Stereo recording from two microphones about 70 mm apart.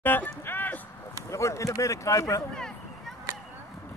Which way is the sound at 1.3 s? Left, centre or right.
Left.